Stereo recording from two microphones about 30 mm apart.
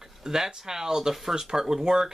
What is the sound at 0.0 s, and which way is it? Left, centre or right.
Speech, centre.